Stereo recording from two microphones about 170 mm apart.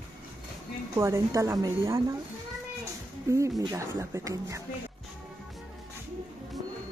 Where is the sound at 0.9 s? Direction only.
20° right (ahead or behind).